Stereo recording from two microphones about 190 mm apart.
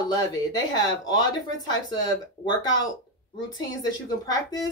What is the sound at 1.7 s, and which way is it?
Speech, 20° left (ahead or behind).